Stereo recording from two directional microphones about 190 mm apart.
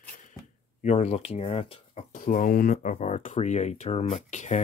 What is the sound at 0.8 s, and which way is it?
Speech, 35° left (ahead or behind).